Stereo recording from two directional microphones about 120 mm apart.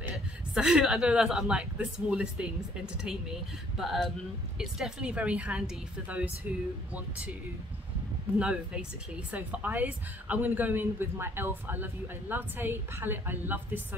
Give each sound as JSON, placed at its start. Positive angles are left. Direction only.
{"t": 0.1, "sound": "a woman's voice", "side_deg": -5}
{"t": 3.7, "sound": "a woman's voice", "side_deg": 0}
{"t": 8.4, "sound": "a woman's voice", "side_deg": -10}